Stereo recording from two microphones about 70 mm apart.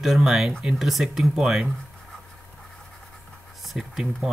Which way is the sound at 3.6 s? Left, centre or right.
Centre.